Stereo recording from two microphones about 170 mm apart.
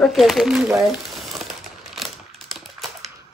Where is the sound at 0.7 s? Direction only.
Centre (ahead or behind).